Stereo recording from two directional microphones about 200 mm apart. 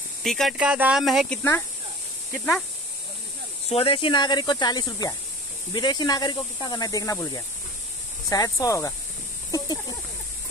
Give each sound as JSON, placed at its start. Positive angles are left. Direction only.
{"t": 0.2, "sound": "speech", "side_deg": 0}
{"t": 3.6, "sound": "speech", "side_deg": 30}